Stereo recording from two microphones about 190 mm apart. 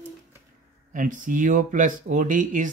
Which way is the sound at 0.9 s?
45° right (ahead or behind).